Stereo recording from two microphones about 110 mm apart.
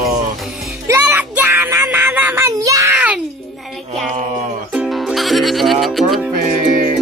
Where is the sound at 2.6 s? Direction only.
30° right (ahead or behind).